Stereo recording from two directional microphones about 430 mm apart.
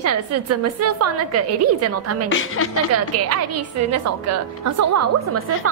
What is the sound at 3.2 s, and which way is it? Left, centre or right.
A woman's voice, right.